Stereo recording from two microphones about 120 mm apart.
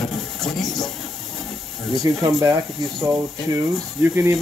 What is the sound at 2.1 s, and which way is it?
Speech, 30° right (ahead or behind).